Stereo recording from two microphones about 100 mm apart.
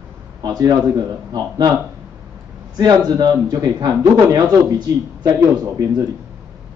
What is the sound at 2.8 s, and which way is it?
Speech, 40° right (ahead or behind).